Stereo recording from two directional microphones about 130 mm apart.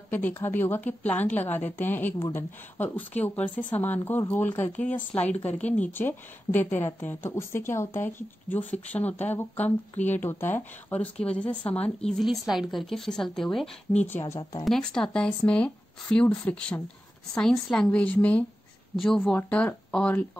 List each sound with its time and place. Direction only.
0.1 s speech: 15° left (ahead or behind)
12.1 s speech: centre (ahead or behind)
14.0 s speech: 20° left (ahead or behind)
14.6 s speech: 5° left (ahead or behind)